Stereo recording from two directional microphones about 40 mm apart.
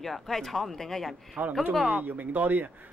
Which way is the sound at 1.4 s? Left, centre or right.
Right.